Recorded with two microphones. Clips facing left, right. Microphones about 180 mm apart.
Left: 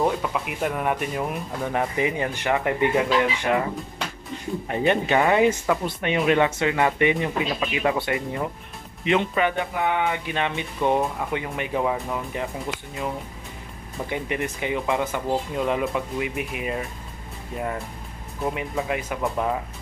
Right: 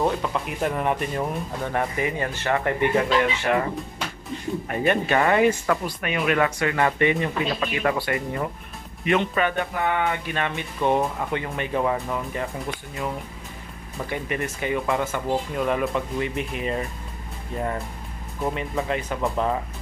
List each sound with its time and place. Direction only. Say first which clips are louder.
0.0 s speech: even; 5° left (ahead or behind)
1.7 s speech: left 2 dB; 20° left (ahead or behind)
14.0 s speech: left 1 dB; 15° left (ahead or behind)
18.4 s speech: even; 5° left (ahead or behind)